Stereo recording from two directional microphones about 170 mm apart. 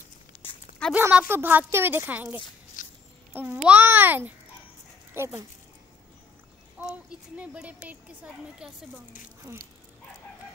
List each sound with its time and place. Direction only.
0.9 s a woman's voice: 10° right (ahead or behind)
2.8 s music: 50° left (ahead or behind)
3.3 s a woman's voice: 10° right (ahead or behind)
6.8 s speech: 5° right (ahead or behind)